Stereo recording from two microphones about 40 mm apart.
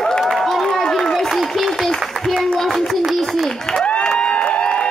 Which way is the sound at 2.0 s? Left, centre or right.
Centre.